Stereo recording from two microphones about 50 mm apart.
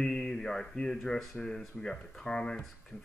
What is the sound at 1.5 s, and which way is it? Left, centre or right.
Speech, centre.